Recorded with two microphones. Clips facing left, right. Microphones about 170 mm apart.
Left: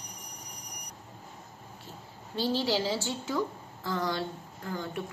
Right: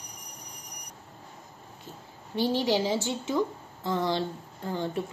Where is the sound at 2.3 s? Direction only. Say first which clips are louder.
Right 3 dB; 15° right (ahead or behind).